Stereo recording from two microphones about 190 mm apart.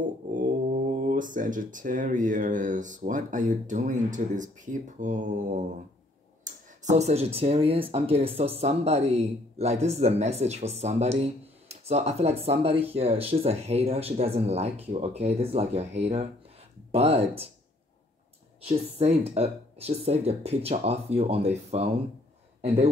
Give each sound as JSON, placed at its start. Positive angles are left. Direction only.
{"t": 0.0, "sound": "speech", "side_deg": -45}
{"t": 18.7, "sound": "speech", "side_deg": -30}